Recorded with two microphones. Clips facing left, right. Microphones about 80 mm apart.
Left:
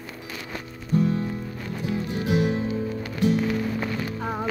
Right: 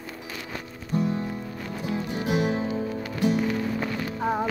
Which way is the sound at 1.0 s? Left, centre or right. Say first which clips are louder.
Left 3 dB; right.